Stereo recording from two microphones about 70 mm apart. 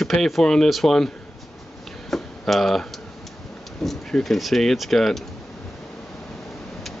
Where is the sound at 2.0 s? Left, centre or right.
Centre.